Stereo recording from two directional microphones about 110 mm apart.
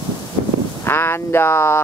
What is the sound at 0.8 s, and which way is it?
Speech, 20° left (ahead or behind).